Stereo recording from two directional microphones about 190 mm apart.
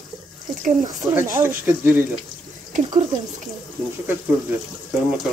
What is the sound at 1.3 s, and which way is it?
Speech, 10° right (ahead or behind).